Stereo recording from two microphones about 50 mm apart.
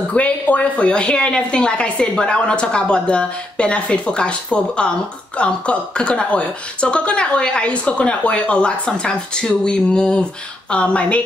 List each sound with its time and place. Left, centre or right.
0.1 s a woman's voice: left